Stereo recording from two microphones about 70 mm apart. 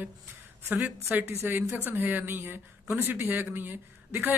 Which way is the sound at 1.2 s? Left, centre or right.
Right.